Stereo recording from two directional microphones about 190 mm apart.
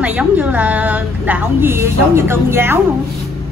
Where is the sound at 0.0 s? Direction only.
5° right (ahead or behind).